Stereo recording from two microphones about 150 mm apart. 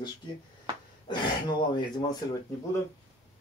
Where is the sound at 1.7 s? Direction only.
30° left (ahead or behind).